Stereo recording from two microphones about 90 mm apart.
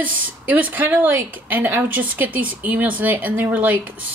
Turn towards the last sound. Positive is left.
turn(degrees=-15)  # may be behind; listen again after turning